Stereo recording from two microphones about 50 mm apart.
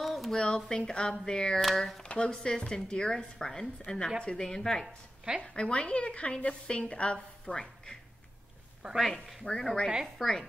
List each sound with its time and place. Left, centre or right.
0.0 s a sound: centre
0.4 s a woman's voice: centre
1.6 s speech: centre
2.0 s a woman's voice: centre
8.9 s a woman's voice: centre